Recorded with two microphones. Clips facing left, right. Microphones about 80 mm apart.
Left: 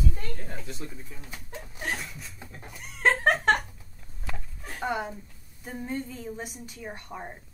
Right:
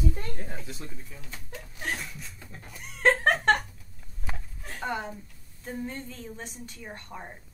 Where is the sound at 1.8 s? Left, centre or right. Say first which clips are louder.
Even; centre.